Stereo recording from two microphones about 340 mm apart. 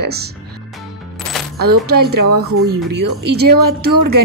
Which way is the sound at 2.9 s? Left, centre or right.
Right.